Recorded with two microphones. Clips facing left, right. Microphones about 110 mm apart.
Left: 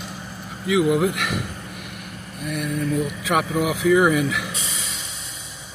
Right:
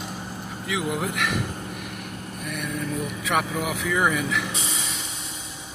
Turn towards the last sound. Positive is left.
turn(degrees=5)  # may be behind; listen again after turning